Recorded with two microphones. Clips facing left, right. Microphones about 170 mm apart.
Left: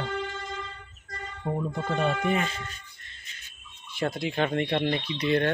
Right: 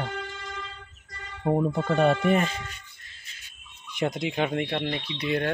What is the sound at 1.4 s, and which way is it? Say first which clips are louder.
Speech: right 6 dB; 50° right (ahead or behind).